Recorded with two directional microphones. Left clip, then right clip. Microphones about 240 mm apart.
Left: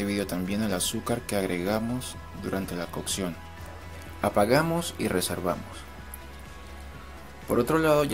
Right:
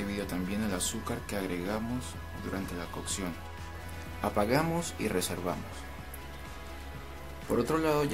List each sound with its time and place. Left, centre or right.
0.0 s speech: left
7.5 s speech: centre